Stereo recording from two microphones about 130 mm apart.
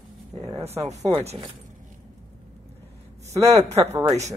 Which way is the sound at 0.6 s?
55° right (ahead or behind).